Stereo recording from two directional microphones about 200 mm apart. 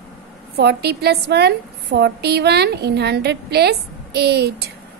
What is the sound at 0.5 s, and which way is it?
A woman's voice, 55° right (ahead or behind).